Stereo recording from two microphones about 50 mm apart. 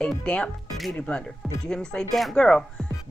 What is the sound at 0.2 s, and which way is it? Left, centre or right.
Speech, left.